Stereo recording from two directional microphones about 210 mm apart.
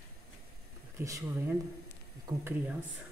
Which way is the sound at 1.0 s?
15° right (ahead or behind).